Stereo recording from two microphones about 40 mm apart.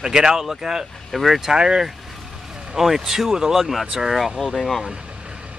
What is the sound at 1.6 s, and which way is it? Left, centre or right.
Speech, right.